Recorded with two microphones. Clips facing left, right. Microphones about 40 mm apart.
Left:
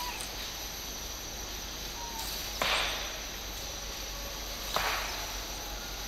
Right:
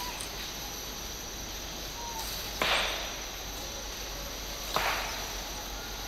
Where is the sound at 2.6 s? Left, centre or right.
Right.